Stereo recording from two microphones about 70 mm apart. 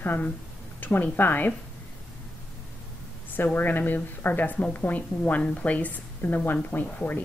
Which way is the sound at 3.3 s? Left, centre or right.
Left.